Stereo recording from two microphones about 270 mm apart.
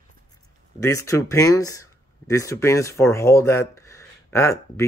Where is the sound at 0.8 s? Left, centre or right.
Centre.